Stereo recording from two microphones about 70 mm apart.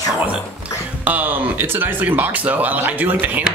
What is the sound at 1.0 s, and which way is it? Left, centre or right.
Speech, right.